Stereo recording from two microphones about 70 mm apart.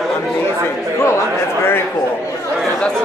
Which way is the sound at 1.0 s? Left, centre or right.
Left.